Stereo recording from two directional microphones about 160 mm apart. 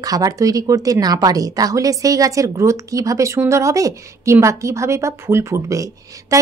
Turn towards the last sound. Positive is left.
turn(degrees=-20)  # may be behind; listen again after turning